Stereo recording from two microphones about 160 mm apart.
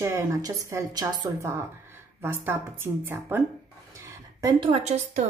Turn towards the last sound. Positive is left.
turn(degrees=-45)  # may be behind; listen again after turning